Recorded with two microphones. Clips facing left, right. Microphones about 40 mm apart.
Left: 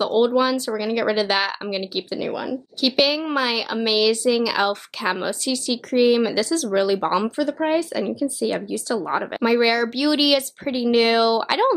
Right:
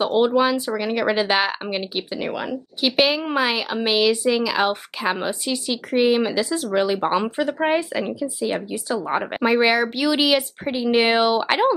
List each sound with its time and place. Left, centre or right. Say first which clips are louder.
0.0 s speech: even; centre
2.8 s speech: even; centre
7.3 s speech: even; right; by 11.7 s centre